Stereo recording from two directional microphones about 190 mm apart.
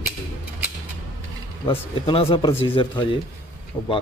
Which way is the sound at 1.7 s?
30° left (ahead or behind).